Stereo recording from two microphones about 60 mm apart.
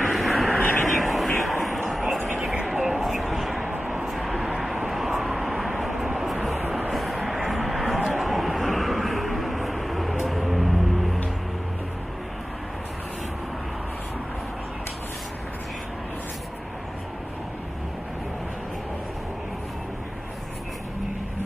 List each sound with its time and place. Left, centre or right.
0.1 s vehicle: centre
2.2 s a sound: centre
3.7 s vehicle: right
4.0 s vehicle: centre
10.2 s music: centre